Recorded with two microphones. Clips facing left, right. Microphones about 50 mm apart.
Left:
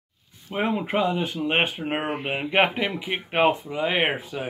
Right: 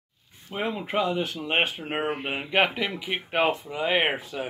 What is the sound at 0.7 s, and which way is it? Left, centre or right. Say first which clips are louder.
Speech: even; centre.